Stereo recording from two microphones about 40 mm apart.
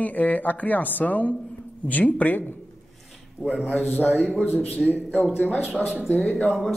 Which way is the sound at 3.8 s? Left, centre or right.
Left.